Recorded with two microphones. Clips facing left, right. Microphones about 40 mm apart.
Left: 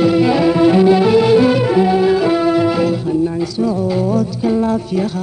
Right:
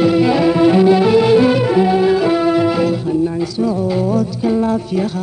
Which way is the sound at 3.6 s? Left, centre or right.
Centre.